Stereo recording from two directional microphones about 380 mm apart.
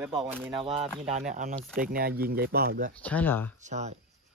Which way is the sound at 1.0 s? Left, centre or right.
Centre.